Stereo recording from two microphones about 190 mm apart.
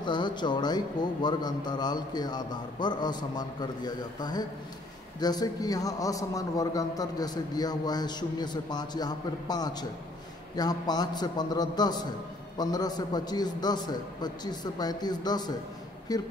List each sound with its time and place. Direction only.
0.0 s a man's voice: 25° left (ahead or behind)